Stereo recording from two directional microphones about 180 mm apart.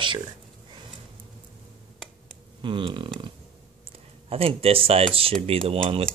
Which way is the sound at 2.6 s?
25° right (ahead or behind).